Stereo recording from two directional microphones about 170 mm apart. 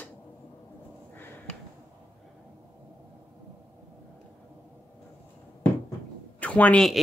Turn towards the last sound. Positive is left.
turn(degrees=5)  # may be behind; listen again after turning